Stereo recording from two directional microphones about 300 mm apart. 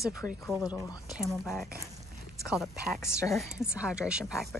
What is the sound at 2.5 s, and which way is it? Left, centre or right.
A woman's voice, centre.